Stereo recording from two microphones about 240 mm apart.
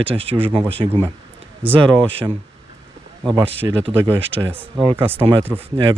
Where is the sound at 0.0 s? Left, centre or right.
Right.